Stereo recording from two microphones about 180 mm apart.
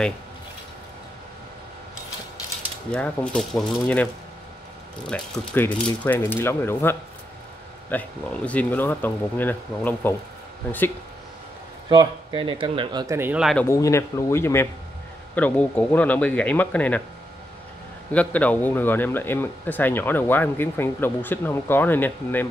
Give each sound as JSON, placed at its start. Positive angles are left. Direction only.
{"t": 2.9, "sound": "speech", "side_deg": 5}
{"t": 11.9, "sound": "speech", "side_deg": -25}
{"t": 13.7, "sound": "speech", "side_deg": 15}
{"t": 18.1, "sound": "speech", "side_deg": 5}